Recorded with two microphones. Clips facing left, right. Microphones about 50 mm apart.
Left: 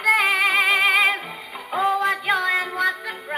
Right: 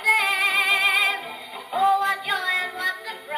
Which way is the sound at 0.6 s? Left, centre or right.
Centre.